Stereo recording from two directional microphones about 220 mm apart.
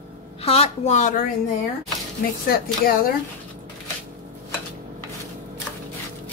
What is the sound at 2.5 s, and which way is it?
Speech, 40° left (ahead or behind).